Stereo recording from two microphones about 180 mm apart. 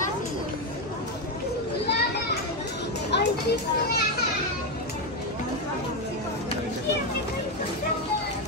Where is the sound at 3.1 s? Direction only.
70° left (ahead or behind).